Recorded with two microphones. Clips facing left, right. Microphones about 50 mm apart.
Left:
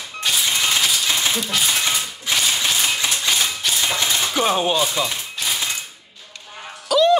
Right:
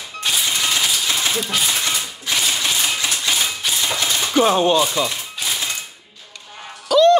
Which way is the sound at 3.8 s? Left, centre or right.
Centre.